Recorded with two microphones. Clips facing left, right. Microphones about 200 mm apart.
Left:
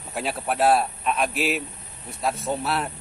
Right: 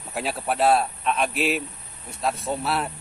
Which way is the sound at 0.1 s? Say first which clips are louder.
Even; centre (ahead or behind).